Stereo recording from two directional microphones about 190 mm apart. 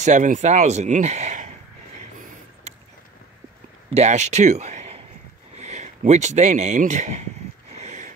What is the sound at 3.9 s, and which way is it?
Speech, 35° right (ahead or behind).